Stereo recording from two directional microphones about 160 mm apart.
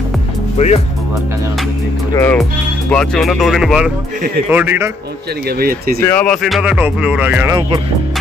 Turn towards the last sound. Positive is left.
turn(degrees=-15)  # may be behind; listen again after turning